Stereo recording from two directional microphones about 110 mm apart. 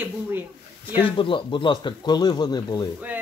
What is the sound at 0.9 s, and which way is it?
Speech, 50° left (ahead or behind).